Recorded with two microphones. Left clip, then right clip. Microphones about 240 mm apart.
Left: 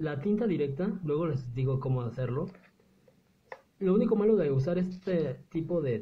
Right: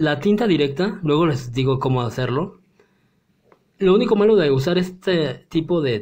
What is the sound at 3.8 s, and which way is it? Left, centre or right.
Speech, right.